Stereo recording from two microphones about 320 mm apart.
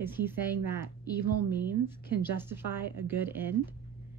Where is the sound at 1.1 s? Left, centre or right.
Left.